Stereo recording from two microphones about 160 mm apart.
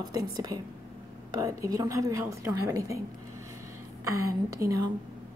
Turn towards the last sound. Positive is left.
turn(degrees=-20)  # may be behind; listen again after turning